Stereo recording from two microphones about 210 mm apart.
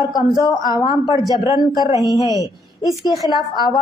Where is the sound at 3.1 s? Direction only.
20° left (ahead or behind).